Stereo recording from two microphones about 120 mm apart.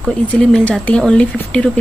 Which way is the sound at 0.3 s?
10° left (ahead or behind).